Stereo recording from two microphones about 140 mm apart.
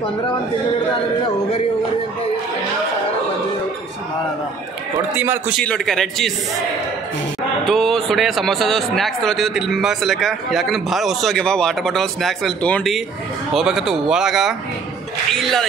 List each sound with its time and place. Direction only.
5.1 s a man's voice: 15° right (ahead or behind)
5.6 s speech: 5° left (ahead or behind)
7.6 s speech: centre (ahead or behind)